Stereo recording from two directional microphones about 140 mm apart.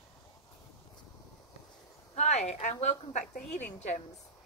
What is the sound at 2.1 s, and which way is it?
A woman's voice, 50° left (ahead or behind).